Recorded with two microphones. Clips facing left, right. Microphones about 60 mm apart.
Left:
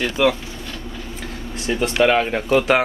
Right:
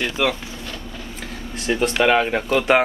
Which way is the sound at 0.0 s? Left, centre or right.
Centre.